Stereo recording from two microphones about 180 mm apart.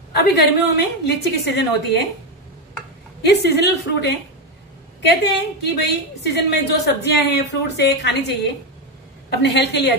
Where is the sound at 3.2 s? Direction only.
65° left (ahead or behind).